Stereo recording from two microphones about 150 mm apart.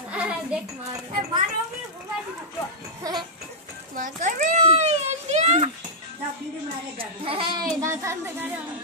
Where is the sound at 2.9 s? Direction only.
25° right (ahead or behind).